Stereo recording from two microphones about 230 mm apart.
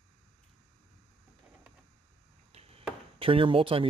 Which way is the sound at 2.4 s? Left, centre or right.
Right.